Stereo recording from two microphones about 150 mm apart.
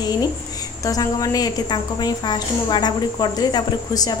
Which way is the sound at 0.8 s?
25° left (ahead or behind).